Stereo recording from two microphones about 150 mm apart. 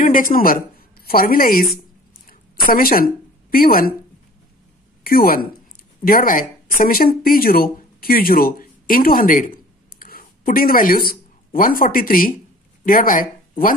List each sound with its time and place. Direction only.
0.0 s speech: 65° left (ahead or behind)
5.0 s speech: 80° left